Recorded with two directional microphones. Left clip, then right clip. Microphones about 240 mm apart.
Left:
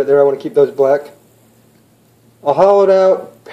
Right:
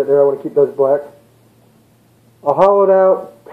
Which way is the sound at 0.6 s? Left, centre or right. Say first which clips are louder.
Left 2 dB; centre.